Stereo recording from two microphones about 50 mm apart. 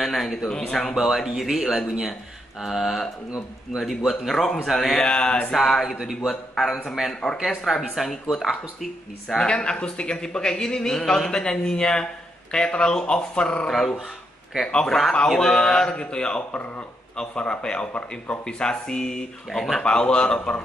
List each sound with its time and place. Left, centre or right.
0.0 s a man's voice: centre
0.9 s a man's voice: centre
5.0 s speech: centre
6.2 s speech: centre
9.3 s a man's voice: centre
13.7 s a man's voice: centre
19.8 s speech: centre